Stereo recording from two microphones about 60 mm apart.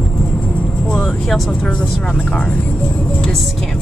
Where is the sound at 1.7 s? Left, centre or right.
Centre.